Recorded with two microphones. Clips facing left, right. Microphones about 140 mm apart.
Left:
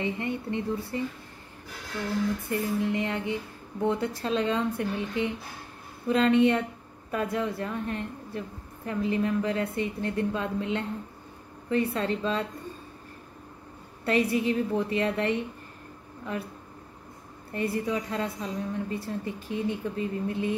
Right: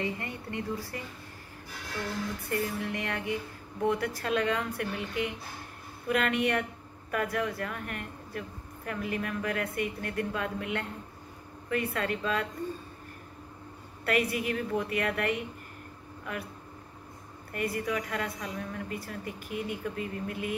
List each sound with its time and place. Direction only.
0.0 s a woman's voice: 20° left (ahead or behind)
2.5 s a woman's voice: 20° left (ahead or behind)
14.0 s a woman's voice: 30° left (ahead or behind)
17.5 s a woman's voice: 25° left (ahead or behind)